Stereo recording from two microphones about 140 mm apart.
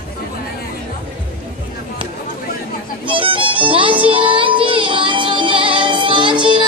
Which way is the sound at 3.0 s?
35° right (ahead or behind).